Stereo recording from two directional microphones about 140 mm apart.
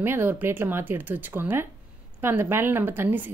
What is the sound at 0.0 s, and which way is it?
A woman's voice, 15° right (ahead or behind).